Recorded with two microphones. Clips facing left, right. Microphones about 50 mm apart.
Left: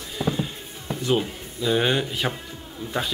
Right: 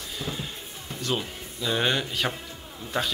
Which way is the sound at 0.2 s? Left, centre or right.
Centre.